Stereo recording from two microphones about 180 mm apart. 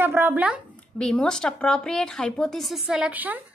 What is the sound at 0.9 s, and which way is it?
A woman's voice, 5° left (ahead or behind).